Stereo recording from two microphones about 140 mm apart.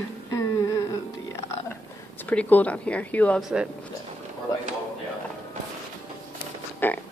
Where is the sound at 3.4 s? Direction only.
5° right (ahead or behind).